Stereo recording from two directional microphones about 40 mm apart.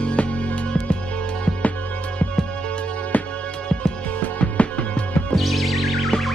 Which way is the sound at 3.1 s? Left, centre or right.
Left.